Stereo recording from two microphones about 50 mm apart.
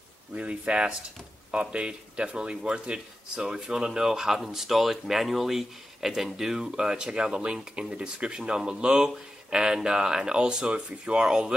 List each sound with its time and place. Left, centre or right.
0.3 s speech: right